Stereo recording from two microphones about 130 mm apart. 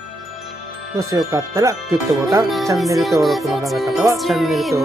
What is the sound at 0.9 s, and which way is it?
Speech, 25° right (ahead or behind).